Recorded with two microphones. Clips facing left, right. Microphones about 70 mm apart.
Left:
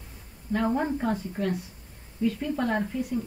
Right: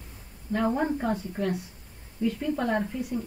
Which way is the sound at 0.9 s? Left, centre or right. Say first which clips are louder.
Even; centre.